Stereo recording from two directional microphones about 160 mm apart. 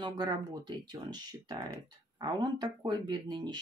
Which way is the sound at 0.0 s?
25° right (ahead or behind).